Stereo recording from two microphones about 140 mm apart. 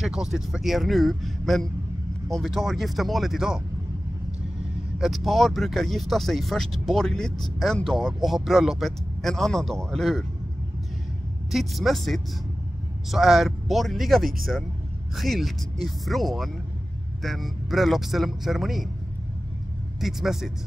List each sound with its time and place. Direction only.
0.0 s speech: 5° right (ahead or behind)
4.9 s speech: centre (ahead or behind)
11.5 s speech: centre (ahead or behind)
20.0 s speech: centre (ahead or behind)